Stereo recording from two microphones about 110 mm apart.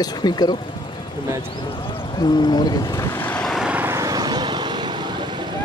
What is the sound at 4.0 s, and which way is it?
Vehicle, 35° right (ahead or behind).